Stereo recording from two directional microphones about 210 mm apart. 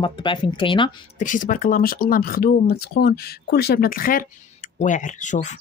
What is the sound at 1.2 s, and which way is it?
Speech, 40° left (ahead or behind).